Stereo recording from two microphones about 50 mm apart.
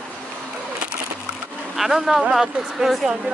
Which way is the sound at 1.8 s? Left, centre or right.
Centre.